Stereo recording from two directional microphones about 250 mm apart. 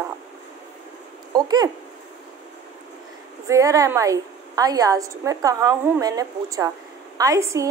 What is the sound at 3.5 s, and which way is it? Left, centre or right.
A woman's voice, centre.